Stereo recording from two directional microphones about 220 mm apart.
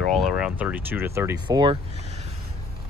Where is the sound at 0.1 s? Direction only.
Centre (ahead or behind); by 1.8 s 20° right (ahead or behind).